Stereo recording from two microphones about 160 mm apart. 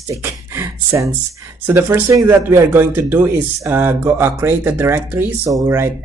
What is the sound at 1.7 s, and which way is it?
Speech, 15° right (ahead or behind).